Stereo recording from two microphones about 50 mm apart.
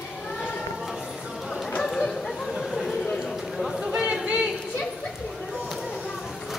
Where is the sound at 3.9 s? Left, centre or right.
Right.